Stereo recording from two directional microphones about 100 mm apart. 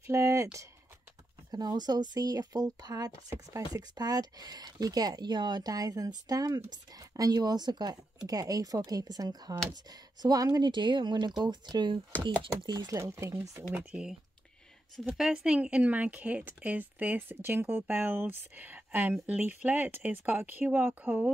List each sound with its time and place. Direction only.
0.0 s speech: 30° right (ahead or behind)
1.5 s speech: 45° right (ahead or behind)
13.1 s speech: 30° right (ahead or behind)
15.1 s speech: 5° right (ahead or behind)